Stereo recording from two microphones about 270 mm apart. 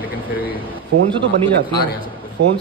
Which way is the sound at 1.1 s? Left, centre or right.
Centre.